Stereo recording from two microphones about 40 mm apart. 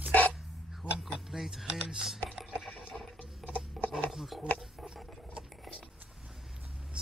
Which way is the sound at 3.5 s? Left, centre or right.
Left.